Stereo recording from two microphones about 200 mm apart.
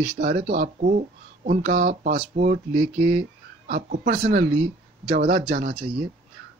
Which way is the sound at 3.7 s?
45° right (ahead or behind).